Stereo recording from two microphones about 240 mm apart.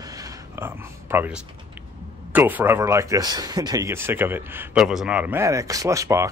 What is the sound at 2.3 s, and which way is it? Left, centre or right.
Speech, centre.